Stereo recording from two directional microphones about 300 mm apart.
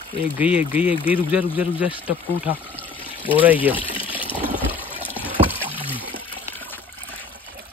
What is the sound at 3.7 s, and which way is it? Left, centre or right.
Speech, centre.